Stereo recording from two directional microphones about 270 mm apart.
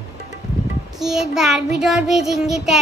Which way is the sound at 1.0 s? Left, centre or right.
Centre.